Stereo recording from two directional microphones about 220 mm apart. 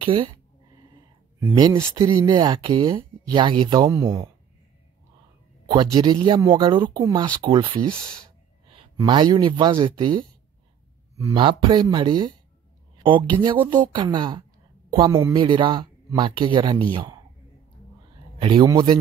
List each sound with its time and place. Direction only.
0.0 s a sound: 20° right (ahead or behind)
1.4 s speech: 15° right (ahead or behind)
5.9 s speech: 20° right (ahead or behind)
18.4 s speech: 20° right (ahead or behind)